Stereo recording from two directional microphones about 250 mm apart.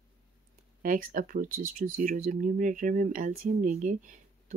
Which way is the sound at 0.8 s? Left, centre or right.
Right.